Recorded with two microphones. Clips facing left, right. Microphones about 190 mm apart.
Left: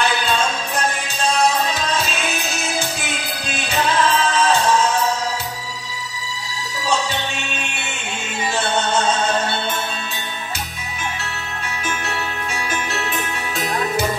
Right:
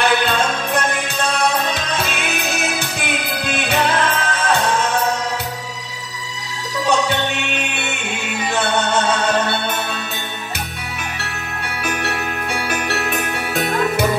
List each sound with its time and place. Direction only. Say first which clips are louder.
0.0 s music: right 3 dB; 60° right (ahead or behind)
7.6 s music: right 4 dB; 60° right (ahead or behind)
11.8 s music: right 4 dB; 60° right (ahead or behind)